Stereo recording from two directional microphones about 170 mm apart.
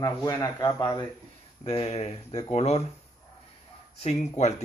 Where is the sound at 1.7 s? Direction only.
40° left (ahead or behind).